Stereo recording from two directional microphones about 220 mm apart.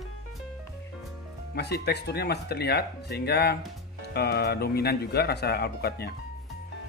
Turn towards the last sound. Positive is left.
turn(degrees=45)  # may be behind; listen again after turning